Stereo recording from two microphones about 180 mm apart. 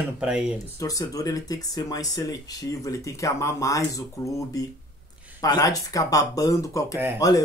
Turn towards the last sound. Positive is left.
turn(degrees=20)  # may be behind; listen again after turning